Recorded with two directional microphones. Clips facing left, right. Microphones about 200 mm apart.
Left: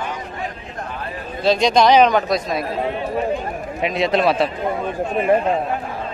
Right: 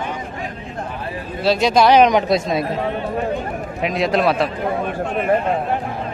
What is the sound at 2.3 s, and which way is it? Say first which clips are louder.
Speech: right 3 dB; 25° right (ahead or behind).